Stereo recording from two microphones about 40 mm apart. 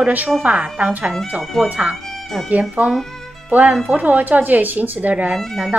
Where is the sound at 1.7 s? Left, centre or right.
Right.